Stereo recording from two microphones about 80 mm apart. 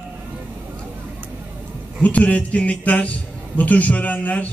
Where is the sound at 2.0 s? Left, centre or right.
Centre.